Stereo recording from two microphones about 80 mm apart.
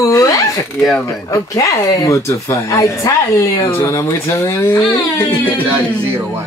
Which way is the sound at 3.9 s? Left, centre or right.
Left.